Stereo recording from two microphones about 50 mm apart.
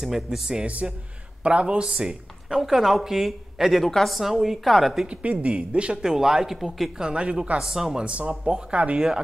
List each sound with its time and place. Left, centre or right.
0.0 s speech: centre
0.8 s a woman's voice: centre
5.0 s speech: right
6.0 s speech: centre
7.0 s speech: centre
7.5 s speech: centre
8.0 s speech: right